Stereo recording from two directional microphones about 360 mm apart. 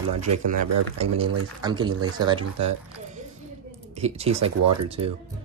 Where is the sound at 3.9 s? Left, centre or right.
Centre.